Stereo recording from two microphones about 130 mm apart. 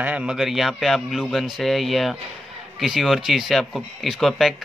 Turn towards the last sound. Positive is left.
turn(degrees=0)  # may be behind; listen again after turning